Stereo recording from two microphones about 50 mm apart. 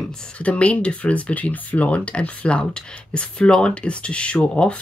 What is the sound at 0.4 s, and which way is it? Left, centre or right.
Speech, left.